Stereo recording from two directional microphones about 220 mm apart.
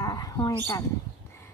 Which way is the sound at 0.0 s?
15° left (ahead or behind).